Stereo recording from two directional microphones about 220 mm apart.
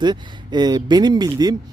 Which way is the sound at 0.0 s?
20° right (ahead or behind).